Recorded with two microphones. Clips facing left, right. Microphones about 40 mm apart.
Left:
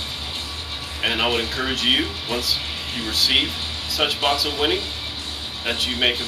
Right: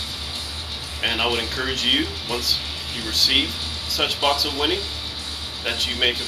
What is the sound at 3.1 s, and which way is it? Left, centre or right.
Speech, centre.